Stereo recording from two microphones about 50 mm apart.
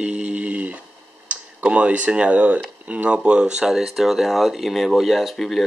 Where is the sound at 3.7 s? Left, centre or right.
Centre.